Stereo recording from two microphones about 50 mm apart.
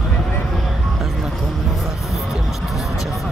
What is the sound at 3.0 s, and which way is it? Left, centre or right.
Vehicle, centre.